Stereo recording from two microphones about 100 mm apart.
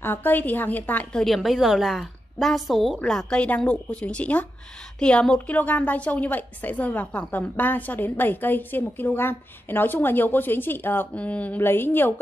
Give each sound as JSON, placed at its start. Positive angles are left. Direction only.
{"t": 0.0, "sound": "a woman's voice", "side_deg": 20}
{"t": 1.2, "sound": "a woman's voice", "side_deg": 0}